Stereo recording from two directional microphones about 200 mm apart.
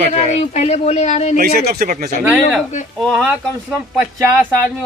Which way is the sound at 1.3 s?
50° right (ahead or behind).